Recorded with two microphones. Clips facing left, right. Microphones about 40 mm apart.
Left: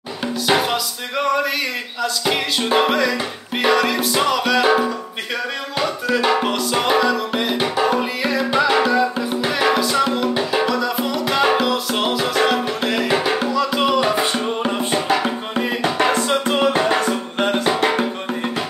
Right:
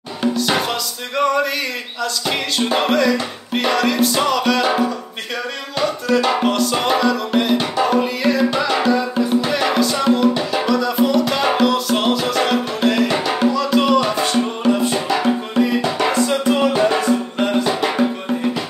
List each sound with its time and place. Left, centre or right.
0.2 s music: centre
14.6 s music: left